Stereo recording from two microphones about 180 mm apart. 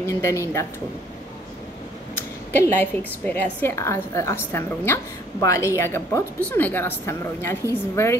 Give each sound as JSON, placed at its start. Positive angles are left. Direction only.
{"t": 0.0, "sound": "a woman's voice", "side_deg": 15}
{"t": 2.5, "sound": "a woman's voice", "side_deg": 10}